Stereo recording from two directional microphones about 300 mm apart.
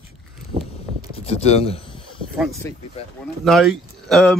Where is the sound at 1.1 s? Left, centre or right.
Centre.